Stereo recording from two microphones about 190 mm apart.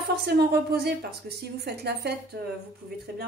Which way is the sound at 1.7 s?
60° right (ahead or behind).